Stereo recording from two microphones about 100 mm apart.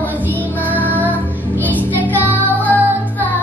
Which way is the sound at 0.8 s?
15° left (ahead or behind).